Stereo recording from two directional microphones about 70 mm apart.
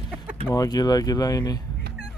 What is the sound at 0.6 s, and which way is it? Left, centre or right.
Speech, left.